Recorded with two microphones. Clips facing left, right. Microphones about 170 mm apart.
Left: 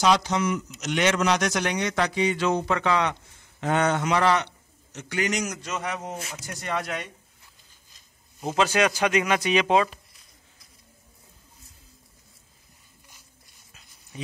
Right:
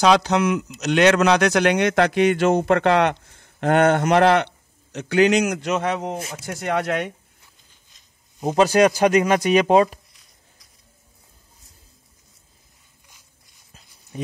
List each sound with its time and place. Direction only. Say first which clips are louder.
0.0 s a man's voice: right 5 dB; 70° right (ahead or behind)
8.4 s speech: right 7 dB; 35° right (ahead or behind)
14.1 s a sound: right 6 dB; 45° right (ahead or behind)